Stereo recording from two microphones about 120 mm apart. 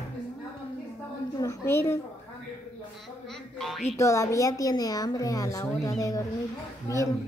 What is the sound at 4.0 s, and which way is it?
A woman's voice, 25° left (ahead or behind).